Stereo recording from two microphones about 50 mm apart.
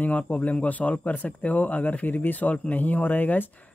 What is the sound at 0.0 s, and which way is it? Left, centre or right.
Speech, left.